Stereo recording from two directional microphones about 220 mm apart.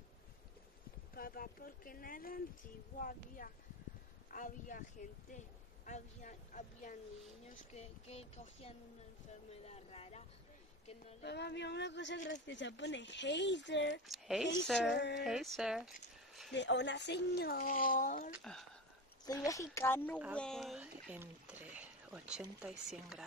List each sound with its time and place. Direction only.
1.1 s speech: 40° left (ahead or behind)
5.9 s speech: 35° left (ahead or behind)
11.2 s speech: 50° left (ahead or behind)
14.0 s speech: centre (ahead or behind)
16.5 s speech: 55° left (ahead or behind); by 18.3 s 35° left (ahead or behind)
18.4 s speech: centre (ahead or behind)
19.4 s speech: 15° left (ahead or behind); by 23.2 s centre (ahead or behind)